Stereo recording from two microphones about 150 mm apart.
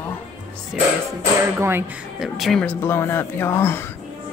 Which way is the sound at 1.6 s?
15° right (ahead or behind).